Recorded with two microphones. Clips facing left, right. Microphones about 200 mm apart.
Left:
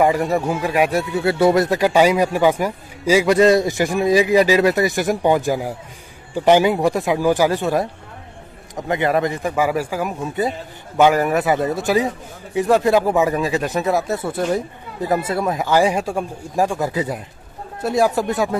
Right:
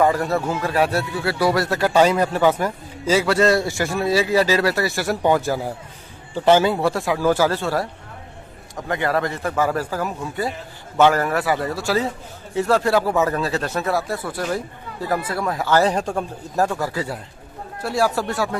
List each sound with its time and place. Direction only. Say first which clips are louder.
0.0 s speech: left 2 dB; 15° left (ahead or behind)